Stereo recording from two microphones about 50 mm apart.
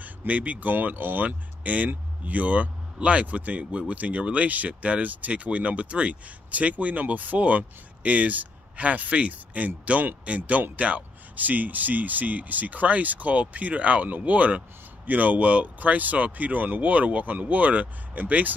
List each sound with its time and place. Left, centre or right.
0.0 s speech: right